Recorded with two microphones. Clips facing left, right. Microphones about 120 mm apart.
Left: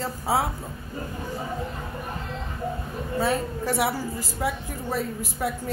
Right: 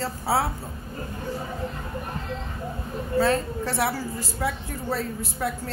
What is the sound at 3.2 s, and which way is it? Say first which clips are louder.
A woman's voice: even; 10° left (ahead or behind).